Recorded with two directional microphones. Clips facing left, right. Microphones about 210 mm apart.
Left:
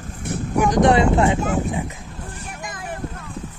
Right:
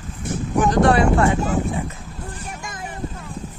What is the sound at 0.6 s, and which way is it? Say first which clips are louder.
Speech: left 1 dB; 15° left (ahead or behind).